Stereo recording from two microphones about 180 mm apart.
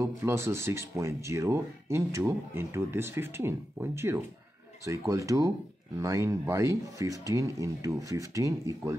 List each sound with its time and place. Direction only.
0.0 s speech: 15° right (ahead or behind)